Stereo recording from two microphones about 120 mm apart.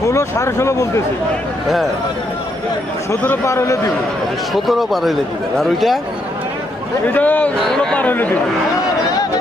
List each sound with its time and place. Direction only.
0.0 s speech: 25° left (ahead or behind)
3.4 s speech: 25° left (ahead or behind)
4.6 s a man's voice: centre (ahead or behind)
7.1 s speech: 15° left (ahead or behind)